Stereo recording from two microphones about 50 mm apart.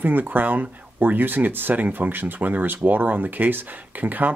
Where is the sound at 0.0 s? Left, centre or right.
Right.